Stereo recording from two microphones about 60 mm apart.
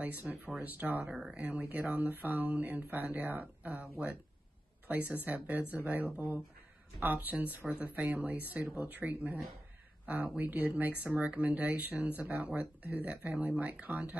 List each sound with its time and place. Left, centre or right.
0.0 s speech: right